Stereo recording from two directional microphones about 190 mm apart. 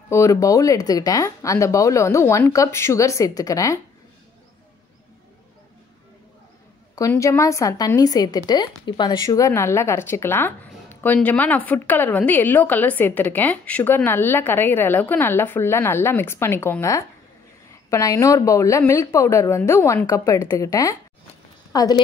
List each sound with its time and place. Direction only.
0.1 s a woman's voice: 15° left (ahead or behind)
7.0 s a woman's voice: 15° left (ahead or behind)